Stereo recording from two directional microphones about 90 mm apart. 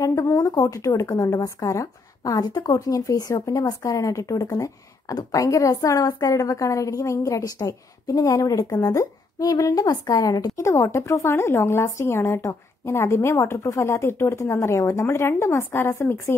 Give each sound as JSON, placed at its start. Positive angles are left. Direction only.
{"t": 0.0, "sound": "a woman's voice", "side_deg": 35}